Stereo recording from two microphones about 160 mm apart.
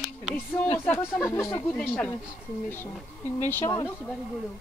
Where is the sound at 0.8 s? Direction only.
15° left (ahead or behind).